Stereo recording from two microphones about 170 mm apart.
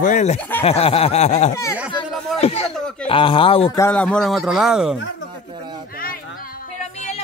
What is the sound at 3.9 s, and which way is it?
Speech, 5° left (ahead or behind).